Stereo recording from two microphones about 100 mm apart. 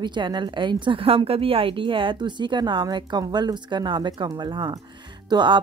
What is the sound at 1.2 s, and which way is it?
Speech, 70° right (ahead or behind).